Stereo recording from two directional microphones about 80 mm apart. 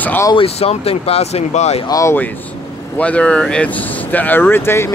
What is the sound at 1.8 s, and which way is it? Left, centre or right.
Speech, left.